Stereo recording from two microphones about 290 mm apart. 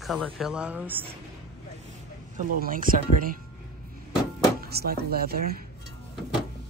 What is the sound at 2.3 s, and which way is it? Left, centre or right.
Speech, right.